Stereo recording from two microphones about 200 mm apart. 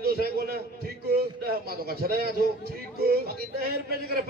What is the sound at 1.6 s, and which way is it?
A man's voice, 50° right (ahead or behind).